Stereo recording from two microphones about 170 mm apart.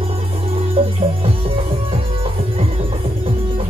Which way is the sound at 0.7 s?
35° right (ahead or behind).